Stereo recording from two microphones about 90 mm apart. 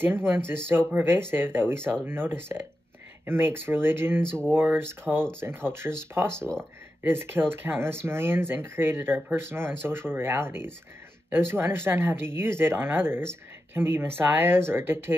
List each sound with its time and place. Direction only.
0.0 s speech: 25° right (ahead or behind)